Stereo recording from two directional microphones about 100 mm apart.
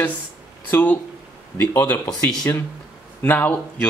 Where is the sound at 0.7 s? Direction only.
20° left (ahead or behind).